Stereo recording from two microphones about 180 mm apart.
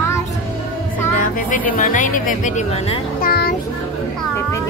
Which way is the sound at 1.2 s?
50° left (ahead or behind).